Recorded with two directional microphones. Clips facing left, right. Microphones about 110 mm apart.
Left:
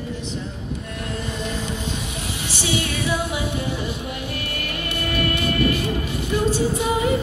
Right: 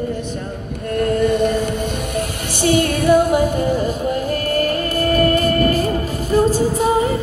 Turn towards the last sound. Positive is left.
turn(degrees=-40)  # may be behind; listen again after turning